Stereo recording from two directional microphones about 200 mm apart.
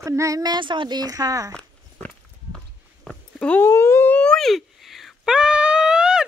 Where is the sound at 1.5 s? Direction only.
5° left (ahead or behind).